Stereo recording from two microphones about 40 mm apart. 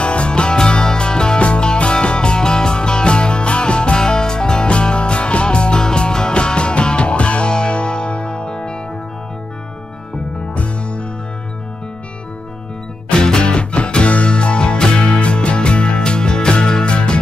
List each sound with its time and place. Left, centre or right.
0.0 s music: left
10.5 s music: left
13.1 s music: centre